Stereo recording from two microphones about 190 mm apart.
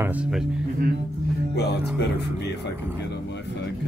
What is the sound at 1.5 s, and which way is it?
Speech, 60° left (ahead or behind).